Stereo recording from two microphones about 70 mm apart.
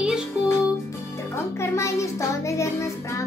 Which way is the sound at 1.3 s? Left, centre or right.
Left.